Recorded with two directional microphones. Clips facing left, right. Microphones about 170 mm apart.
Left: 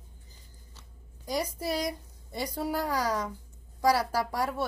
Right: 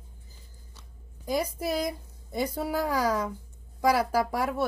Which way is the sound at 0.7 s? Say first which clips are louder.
Right 2 dB; 10° right (ahead or behind).